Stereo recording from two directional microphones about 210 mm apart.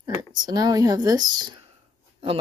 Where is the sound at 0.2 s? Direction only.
20° right (ahead or behind).